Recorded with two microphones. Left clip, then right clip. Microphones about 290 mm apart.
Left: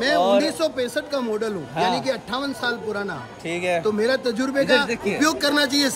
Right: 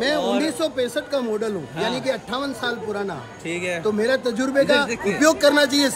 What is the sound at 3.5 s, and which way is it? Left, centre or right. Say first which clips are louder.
Speech: left 3 dB; centre.